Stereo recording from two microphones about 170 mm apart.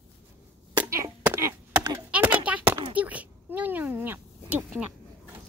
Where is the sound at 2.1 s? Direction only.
10° right (ahead or behind).